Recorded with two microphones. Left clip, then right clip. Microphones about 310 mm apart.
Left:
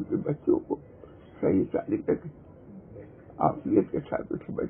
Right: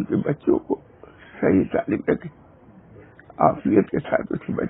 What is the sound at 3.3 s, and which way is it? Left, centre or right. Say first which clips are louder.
Speech: right 7 dB; right.